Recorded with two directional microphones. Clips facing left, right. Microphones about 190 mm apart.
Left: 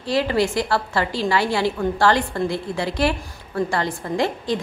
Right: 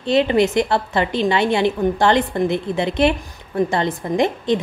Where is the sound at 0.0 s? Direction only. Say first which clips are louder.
Right 4 dB; 20° right (ahead or behind).